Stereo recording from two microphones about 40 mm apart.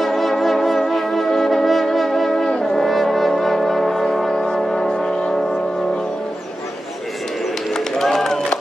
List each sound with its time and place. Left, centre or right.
0.0 s music: centre
2.7 s brass instrument: centre
7.7 s run: centre